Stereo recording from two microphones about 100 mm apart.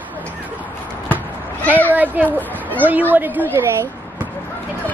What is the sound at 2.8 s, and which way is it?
A woman's voice, 20° right (ahead or behind).